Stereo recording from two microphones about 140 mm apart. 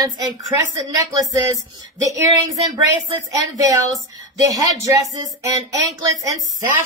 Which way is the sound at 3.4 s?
25° right (ahead or behind).